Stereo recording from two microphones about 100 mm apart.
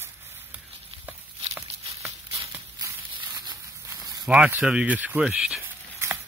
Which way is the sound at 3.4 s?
40° right (ahead or behind).